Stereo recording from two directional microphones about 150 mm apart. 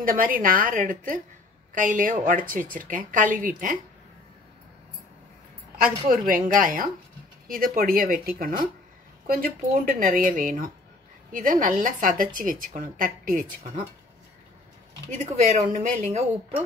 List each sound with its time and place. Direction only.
0.0 s a woman's voice: 70° right (ahead or behind)
5.8 s a woman's voice: 70° right (ahead or behind)
15.0 s speech: 50° right (ahead or behind)